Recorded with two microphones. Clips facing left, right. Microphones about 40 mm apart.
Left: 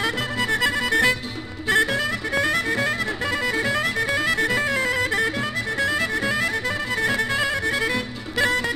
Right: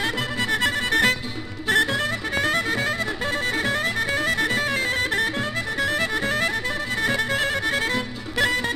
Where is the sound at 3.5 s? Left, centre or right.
Right.